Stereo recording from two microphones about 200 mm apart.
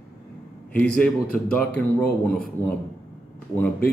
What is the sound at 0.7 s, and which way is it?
Speech, 5° left (ahead or behind).